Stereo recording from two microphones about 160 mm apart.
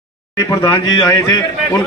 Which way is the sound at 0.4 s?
20° left (ahead or behind).